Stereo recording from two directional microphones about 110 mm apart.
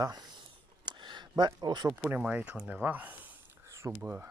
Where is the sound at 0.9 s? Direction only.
45° right (ahead or behind).